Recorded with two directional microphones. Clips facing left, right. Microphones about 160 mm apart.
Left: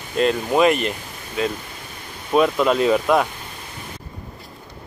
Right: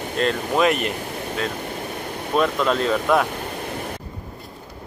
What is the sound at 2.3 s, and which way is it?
Speech, 5° left (ahead or behind).